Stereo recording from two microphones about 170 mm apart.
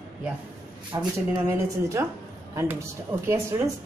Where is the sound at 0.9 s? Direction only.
15° right (ahead or behind).